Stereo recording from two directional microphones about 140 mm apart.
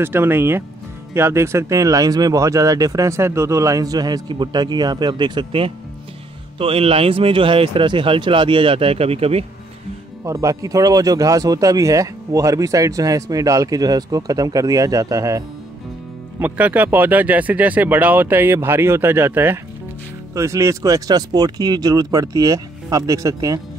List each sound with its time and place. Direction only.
0.0 s speech: 15° right (ahead or behind); by 9.5 s 45° right (ahead or behind)
10.2 s speech: 20° right (ahead or behind)
16.3 s speech: 10° right (ahead or behind)